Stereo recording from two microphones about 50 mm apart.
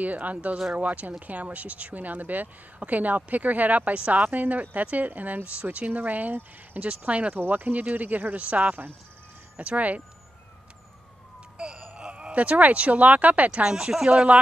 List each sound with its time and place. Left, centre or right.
0.0 s speech: right
6.8 s speech: right
7.3 s speech: right
11.5 s speech: right
13.7 s speech: centre